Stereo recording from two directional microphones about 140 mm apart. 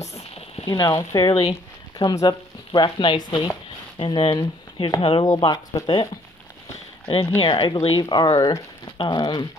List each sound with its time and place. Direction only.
0.0 s a sound: 50° left (ahead or behind)
0.7 s speech: 25° left (ahead or behind)
1.3 s speech: 45° left (ahead or behind)
2.0 s speech: 30° left (ahead or behind)
7.1 s speech: 40° left (ahead or behind)